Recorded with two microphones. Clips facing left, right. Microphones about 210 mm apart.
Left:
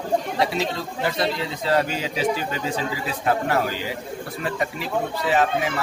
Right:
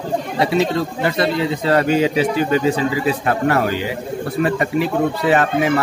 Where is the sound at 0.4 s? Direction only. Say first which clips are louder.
Right 7 dB; 65° right (ahead or behind).